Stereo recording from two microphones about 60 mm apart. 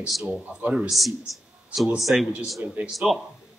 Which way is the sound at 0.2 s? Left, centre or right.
Right.